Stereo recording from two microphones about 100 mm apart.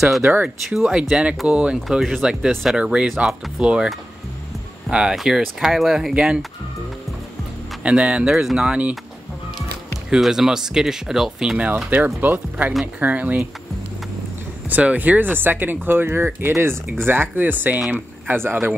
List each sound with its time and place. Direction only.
0.2 s speech: 15° right (ahead or behind)
0.7 s speech: 5° right (ahead or behind)
7.8 s speech: 10° right (ahead or behind)
14.7 s speech: 15° right (ahead or behind)
18.2 s speech: 20° right (ahead or behind)